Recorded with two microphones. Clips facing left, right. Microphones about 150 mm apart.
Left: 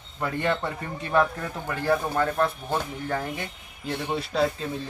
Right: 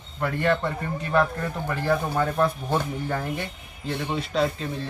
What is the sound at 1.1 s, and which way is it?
Speech, 5° left (ahead or behind).